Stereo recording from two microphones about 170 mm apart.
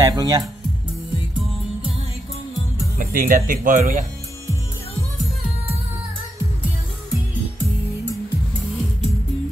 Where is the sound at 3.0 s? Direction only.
55° right (ahead or behind).